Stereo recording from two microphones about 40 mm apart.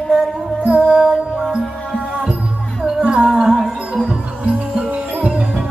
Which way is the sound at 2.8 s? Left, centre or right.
Centre.